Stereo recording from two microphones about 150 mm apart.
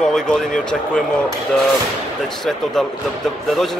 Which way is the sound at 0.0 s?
5° left (ahead or behind).